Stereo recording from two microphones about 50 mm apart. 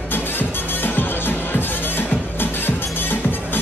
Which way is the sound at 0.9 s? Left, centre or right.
Left.